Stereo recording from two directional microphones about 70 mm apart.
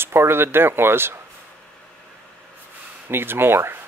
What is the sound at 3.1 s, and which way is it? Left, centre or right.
Speech, right.